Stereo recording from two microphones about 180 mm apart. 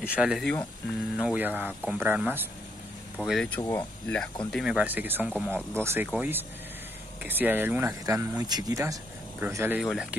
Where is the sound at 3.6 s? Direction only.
15° left (ahead or behind).